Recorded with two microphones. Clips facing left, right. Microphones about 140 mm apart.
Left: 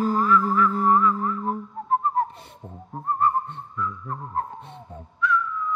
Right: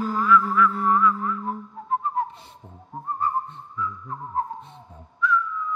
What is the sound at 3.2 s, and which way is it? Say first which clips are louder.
Whistling: left 3 dB; 65° left (ahead or behind).